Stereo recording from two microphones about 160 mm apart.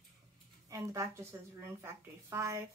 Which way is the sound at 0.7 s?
20° right (ahead or behind).